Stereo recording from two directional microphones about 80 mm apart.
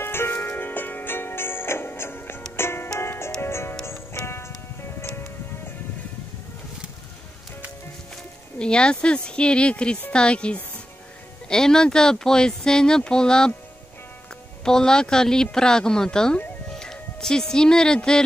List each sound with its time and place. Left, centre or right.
0.0 s music: left
8.5 s speech: centre
14.6 s speech: centre